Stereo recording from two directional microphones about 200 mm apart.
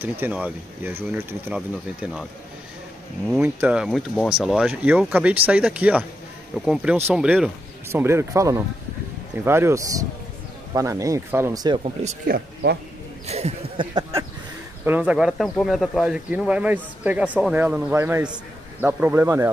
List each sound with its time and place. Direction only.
0.0 s speech: 10° right (ahead or behind)
3.3 s speech: 5° right (ahead or behind); by 11.9 s 20° right (ahead or behind)
12.0 s speech: 35° right (ahead or behind)
14.9 s speech: 5° right (ahead or behind)